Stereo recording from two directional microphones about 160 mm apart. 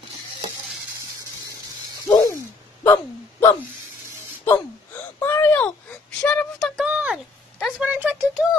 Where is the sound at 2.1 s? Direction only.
25° left (ahead or behind).